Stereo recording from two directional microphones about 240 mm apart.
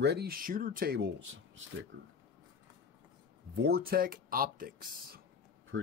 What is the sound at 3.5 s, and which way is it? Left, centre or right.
Speech, right.